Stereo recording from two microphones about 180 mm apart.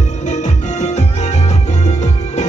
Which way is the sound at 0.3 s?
40° left (ahead or behind).